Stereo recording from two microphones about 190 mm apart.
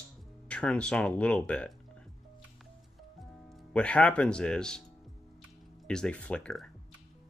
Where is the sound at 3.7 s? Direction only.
5° left (ahead or behind).